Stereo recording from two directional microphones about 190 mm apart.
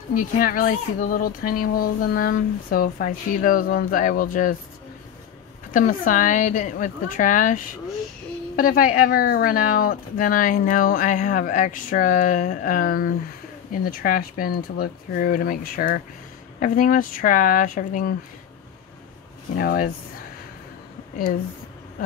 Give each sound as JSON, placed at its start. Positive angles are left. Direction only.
{"t": 0.1, "sound": "speech", "side_deg": 45}
{"t": 5.7, "sound": "speech", "side_deg": 45}
{"t": 19.6, "sound": "speech", "side_deg": 50}